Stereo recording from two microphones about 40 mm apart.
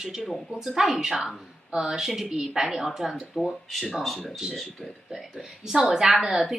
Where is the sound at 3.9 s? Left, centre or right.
Centre.